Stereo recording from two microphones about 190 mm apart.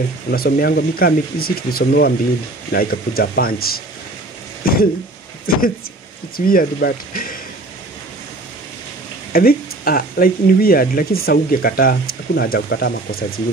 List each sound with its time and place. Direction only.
0.3 s speech: 55° left (ahead or behind)
4.6 s a sound: 50° left (ahead or behind)
5.5 s speech: 50° left (ahead or behind)
9.3 s speech: 50° left (ahead or behind)